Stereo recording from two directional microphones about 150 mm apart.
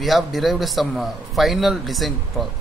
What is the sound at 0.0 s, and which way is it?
A man's voice, centre (ahead or behind).